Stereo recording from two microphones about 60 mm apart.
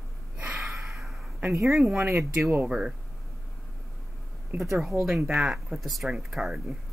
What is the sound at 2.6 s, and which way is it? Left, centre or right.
Speech, centre.